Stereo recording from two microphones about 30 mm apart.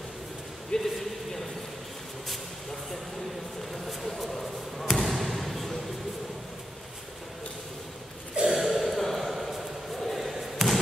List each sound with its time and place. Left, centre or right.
0.7 s speech: left
4.0 s basketball bounce: centre
8.5 s a sound: centre
9.9 s slam: centre